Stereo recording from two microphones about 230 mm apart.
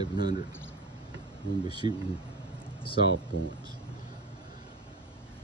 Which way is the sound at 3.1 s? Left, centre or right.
Right.